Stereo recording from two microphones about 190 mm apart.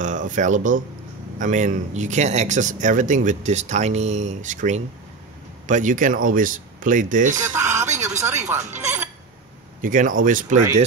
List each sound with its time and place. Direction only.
0.0 s speech: 40° right (ahead or behind)
7.5 s a sound: 15° right (ahead or behind)
8.5 s speech: 15° right (ahead or behind)
9.8 s speech: 45° right (ahead or behind)